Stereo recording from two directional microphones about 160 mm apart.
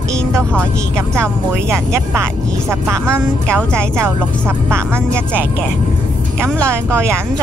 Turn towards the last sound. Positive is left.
turn(degrees=-15)  # may be behind; listen again after turning